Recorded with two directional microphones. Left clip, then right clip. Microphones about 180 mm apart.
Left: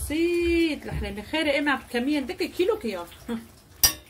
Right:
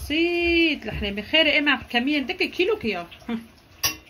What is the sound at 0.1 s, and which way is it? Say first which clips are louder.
Speech: right 3 dB; 45° right (ahead or behind).